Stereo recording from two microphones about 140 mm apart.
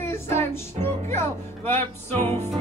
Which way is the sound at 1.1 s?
15° left (ahead or behind).